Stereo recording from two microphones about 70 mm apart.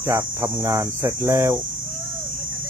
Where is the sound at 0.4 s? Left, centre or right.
Right.